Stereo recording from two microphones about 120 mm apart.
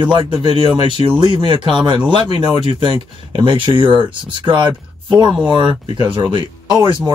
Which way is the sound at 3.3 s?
40° right (ahead or behind).